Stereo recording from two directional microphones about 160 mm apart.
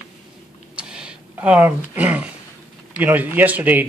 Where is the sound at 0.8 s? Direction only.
5° right (ahead or behind).